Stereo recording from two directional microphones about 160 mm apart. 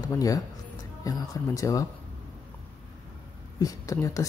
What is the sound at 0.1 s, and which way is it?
A woman's voice, 20° left (ahead or behind).